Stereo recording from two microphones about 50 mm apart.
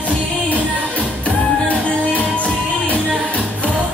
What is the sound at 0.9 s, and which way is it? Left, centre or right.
Music, left.